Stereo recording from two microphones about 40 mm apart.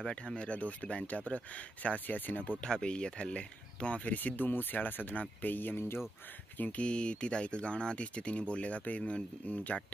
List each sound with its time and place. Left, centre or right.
0.4 s speech: left
2.6 s speech: left
4.4 s speech: left
6.8 s speech: left